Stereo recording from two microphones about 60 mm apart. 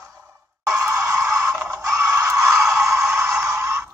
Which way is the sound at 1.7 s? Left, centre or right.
Right.